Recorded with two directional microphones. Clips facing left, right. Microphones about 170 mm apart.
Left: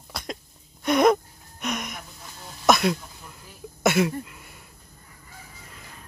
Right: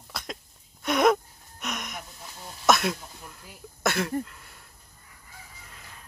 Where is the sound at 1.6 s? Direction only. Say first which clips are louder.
Left 5 dB; centre (ahead or behind).